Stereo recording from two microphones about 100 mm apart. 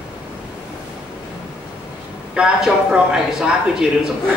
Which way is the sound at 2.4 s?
10° right (ahead or behind).